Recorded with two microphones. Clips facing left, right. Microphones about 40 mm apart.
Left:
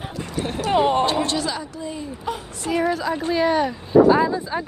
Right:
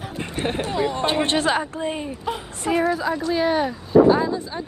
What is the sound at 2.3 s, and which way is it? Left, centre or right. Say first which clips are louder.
Speech: right 1 dB; right.